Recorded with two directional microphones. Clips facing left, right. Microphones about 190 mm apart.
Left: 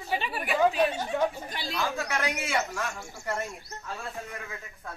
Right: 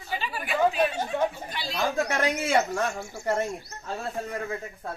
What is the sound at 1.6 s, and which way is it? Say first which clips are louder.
Speech: right 3 dB; 50° left (ahead or behind).